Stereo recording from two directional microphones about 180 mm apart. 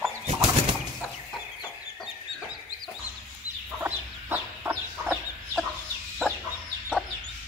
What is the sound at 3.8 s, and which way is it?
Chicken, 10° right (ahead or behind).